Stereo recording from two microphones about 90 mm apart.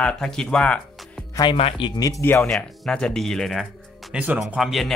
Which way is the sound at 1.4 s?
80° left.